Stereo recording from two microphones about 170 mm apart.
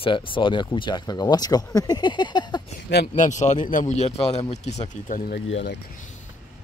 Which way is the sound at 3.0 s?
45° left (ahead or behind).